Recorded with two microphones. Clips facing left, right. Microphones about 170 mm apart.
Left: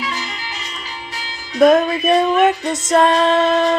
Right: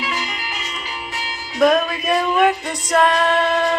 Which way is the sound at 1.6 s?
25° left (ahead or behind).